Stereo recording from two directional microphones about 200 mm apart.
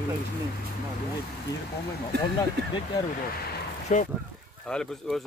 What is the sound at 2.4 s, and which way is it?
Speech, 20° left (ahead or behind).